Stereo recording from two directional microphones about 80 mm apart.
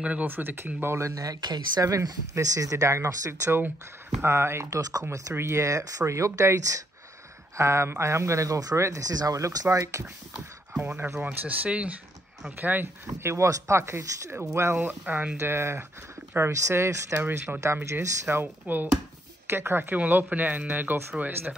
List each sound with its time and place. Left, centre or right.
0.0 s speech: centre
0.3 s speech: right
10.8 s speech: right
13.0 s speech: right
17.2 s speech: right